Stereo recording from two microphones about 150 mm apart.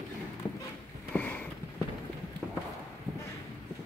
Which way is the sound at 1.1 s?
10° left (ahead or behind).